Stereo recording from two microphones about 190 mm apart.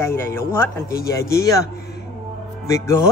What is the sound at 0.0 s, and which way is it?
Speech, 15° left (ahead or behind).